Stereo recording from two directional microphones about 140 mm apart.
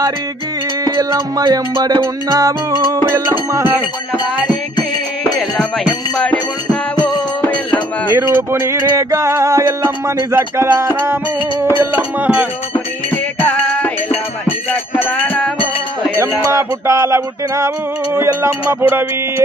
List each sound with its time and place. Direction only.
0.8 s music: 25° right (ahead or behind)
6.1 s music: 5° left (ahead or behind)
8.1 s music: 15° right (ahead or behind)
11.7 s speech: 10° right (ahead or behind)
13.1 s music: 15° left (ahead or behind)
16.5 s music: 20° right (ahead or behind)
18.1 s speech: 20° right (ahead or behind)